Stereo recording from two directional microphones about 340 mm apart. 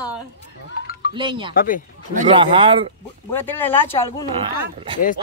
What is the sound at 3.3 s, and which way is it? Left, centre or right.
Speech, centre.